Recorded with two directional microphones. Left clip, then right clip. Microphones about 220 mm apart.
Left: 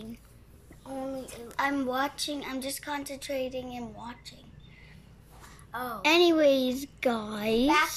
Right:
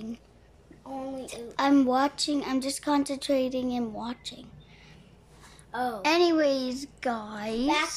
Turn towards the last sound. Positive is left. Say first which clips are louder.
# left 4 dB
turn(degrees=0)  # may be behind; listen again after turning